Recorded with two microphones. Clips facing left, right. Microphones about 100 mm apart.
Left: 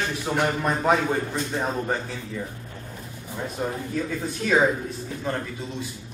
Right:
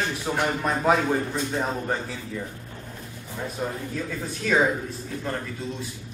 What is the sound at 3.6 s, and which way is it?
Speech, centre (ahead or behind).